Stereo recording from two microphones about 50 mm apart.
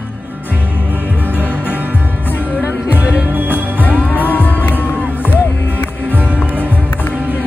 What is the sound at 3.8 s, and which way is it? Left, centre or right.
Music, left.